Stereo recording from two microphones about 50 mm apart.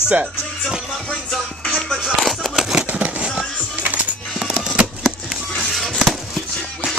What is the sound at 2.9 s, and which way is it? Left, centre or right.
Fireworks, right.